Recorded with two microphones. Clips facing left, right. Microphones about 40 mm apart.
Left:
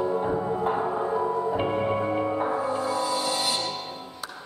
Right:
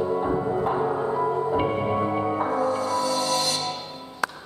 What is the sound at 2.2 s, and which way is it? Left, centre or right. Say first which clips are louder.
Music: right 1 dB; centre.